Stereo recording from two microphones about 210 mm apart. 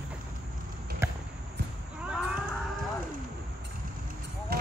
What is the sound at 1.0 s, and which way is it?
Basketball bounce, 10° right (ahead or behind).